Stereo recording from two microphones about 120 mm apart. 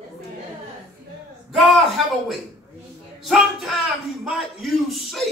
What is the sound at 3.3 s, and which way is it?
A man's voice, centre (ahead or behind).